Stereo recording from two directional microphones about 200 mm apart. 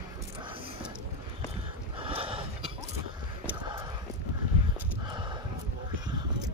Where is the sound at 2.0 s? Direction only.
25° right (ahead or behind).